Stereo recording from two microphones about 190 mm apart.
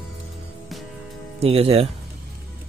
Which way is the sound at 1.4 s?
30° right (ahead or behind).